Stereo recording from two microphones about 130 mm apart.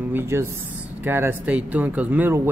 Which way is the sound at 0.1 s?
20° right (ahead or behind).